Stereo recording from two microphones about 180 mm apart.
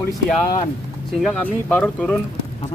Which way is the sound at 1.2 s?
5° left (ahead or behind).